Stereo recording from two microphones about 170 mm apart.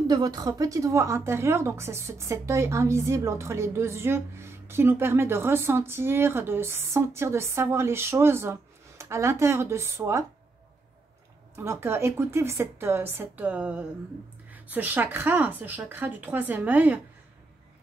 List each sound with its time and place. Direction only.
0.1 s a woman's voice: 25° right (ahead or behind)
11.5 s a woman's voice: 15° right (ahead or behind)